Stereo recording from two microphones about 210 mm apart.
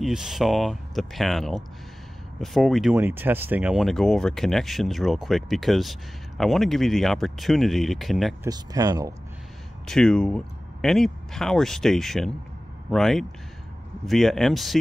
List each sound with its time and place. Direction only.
0.0 s speech: centre (ahead or behind)
8.5 s speech: 15° right (ahead or behind)
9.8 s speech: centre (ahead or behind)